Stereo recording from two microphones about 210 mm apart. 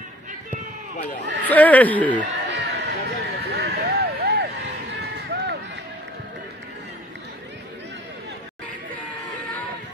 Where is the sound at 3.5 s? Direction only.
50° right (ahead or behind).